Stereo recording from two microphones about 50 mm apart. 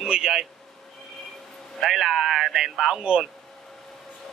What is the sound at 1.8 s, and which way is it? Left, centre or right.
Speech, centre.